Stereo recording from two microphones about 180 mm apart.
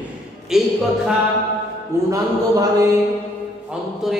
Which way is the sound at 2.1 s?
20° right (ahead or behind).